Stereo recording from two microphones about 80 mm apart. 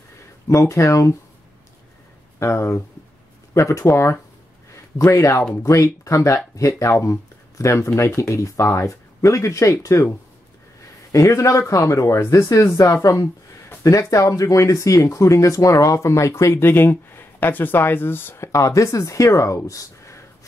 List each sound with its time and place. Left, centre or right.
0.5 s speech: left
2.3 s speech: left
11.1 s a man's voice: left